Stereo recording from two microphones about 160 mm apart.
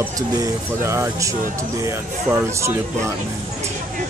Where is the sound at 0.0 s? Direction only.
15° right (ahead or behind).